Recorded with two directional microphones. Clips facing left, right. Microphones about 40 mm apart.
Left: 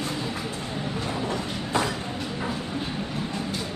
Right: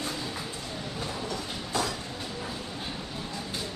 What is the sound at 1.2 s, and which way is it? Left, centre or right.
Train, left.